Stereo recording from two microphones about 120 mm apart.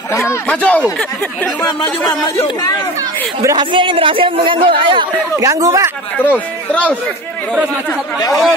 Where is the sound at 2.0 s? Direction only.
30° left (ahead or behind).